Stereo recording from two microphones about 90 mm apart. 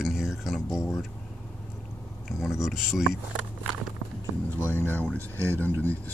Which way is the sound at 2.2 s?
5° right (ahead or behind).